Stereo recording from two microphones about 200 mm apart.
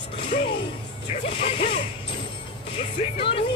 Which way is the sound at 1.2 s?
30° left (ahead or behind).